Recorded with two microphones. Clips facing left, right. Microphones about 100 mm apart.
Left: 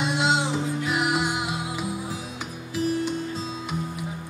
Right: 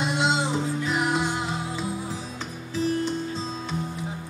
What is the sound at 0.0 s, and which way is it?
Music, centre (ahead or behind).